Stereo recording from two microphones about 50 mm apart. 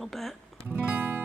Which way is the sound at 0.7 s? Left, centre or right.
Right.